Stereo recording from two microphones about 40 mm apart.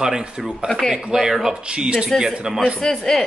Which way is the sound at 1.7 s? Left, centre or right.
Right.